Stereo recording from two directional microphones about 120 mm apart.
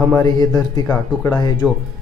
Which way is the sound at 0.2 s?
35° left (ahead or behind).